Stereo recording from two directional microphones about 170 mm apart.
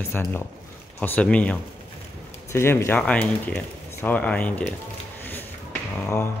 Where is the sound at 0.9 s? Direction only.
10° left (ahead or behind).